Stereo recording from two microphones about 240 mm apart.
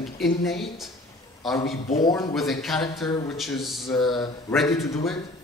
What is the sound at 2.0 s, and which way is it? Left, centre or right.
Speech, centre.